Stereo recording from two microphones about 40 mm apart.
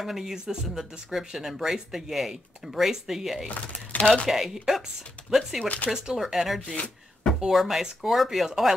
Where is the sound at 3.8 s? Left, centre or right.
Left.